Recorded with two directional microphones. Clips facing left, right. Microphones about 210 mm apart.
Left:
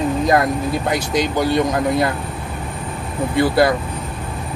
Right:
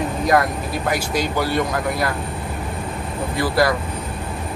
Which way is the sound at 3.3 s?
25° left (ahead or behind).